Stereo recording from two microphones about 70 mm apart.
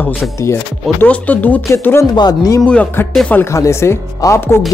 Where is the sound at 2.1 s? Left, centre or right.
Left.